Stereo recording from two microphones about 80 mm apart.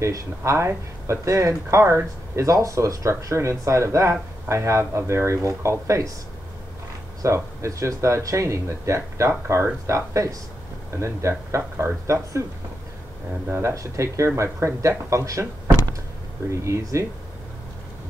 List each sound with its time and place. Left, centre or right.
0.0 s speech: right
7.2 s speech: right
13.5 s speech: right
16.4 s speech: right